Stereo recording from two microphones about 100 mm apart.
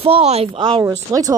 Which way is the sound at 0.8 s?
35° right (ahead or behind).